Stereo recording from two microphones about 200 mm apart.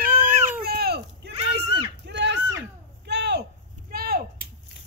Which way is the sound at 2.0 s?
60° right (ahead or behind).